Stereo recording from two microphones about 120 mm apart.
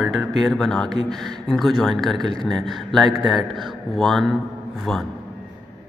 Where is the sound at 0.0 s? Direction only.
Centre (ahead or behind).